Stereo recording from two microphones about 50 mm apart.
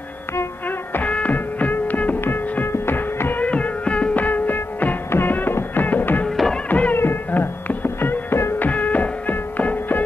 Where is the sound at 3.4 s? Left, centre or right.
Left.